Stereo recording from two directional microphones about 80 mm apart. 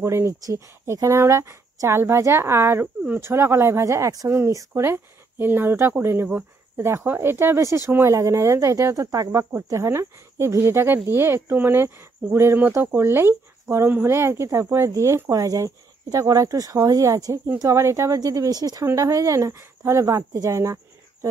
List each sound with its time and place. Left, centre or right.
0.0 s speech: right
18.9 s speech: right
20.4 s a sound: right